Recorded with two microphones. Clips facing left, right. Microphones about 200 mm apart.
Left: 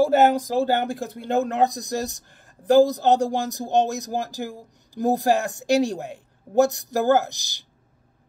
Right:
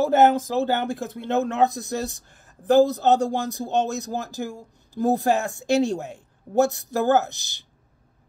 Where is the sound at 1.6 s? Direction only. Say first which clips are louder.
Even; 15° left (ahead or behind).